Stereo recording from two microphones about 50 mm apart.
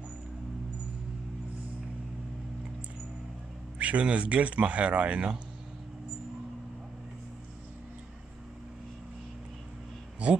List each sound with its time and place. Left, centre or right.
3.7 s speech: right